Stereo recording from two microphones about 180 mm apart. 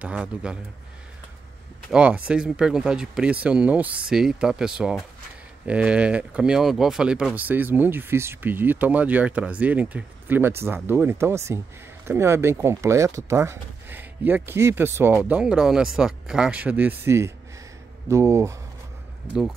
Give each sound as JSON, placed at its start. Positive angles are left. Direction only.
{"t": 0.0, "sound": "speech", "side_deg": -5}
{"t": 1.9, "sound": "speech", "side_deg": -5}